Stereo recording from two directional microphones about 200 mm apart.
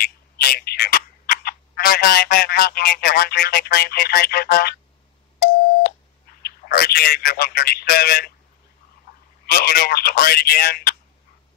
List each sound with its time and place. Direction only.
0.4 s speech: 50° left (ahead or behind)
5.4 s busy signal: 55° left (ahead or behind)
6.4 s a man's voice: 50° left (ahead or behind)
9.5 s speech: 45° left (ahead or behind)